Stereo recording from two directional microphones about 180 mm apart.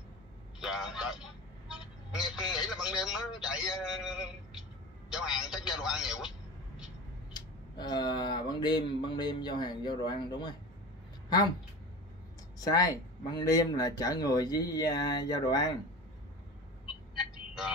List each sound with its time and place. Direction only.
0.6 s a man's voice: centre (ahead or behind)
7.3 s speech: 25° left (ahead or behind)
12.5 s speech: 20° left (ahead or behind)